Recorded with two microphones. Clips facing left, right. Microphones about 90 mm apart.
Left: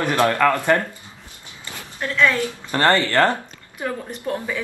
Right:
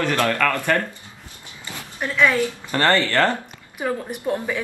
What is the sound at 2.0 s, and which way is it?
Speech, 15° right (ahead or behind).